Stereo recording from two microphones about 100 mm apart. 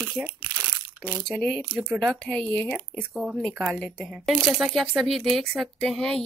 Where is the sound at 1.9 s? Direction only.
5° right (ahead or behind).